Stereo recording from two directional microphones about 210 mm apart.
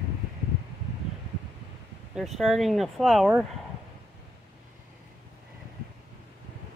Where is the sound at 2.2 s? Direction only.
Centre (ahead or behind).